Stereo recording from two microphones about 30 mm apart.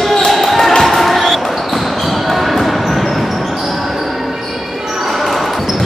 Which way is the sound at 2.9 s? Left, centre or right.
Centre.